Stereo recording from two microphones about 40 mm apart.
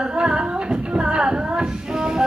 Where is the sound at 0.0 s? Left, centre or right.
Right.